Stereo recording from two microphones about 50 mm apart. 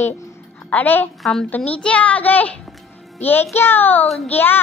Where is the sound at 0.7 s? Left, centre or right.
Left.